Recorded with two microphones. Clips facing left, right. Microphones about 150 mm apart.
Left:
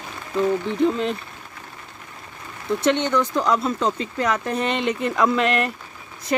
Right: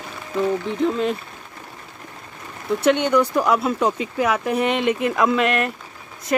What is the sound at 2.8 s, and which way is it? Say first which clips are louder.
Speech: right 3 dB; 10° right (ahead or behind).